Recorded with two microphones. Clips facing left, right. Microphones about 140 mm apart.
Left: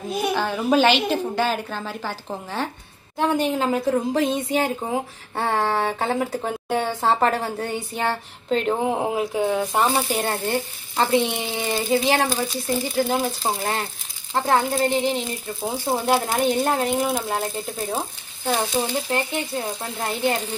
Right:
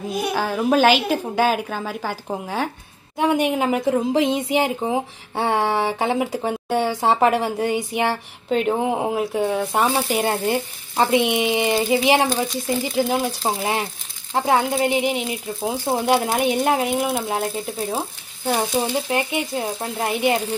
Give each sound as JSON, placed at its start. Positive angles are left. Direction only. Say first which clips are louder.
{"t": 0.3, "sound": "a woman's voice", "louder": "right 1 dB", "side_deg": -10}
{"t": 9.9, "sound": "a woman's voice", "louder": "right 2 dB", "side_deg": -10}
{"t": 13.1, "sound": "a woman's voice", "louder": "right 1 dB", "side_deg": 0}